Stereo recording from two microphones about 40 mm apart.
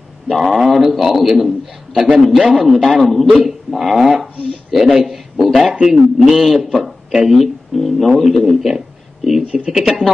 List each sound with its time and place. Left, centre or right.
0.3 s a man's voice: centre
5.7 s a man's voice: right
6.1 s a man's voice: centre
7.1 s speech: centre
7.3 s speech: centre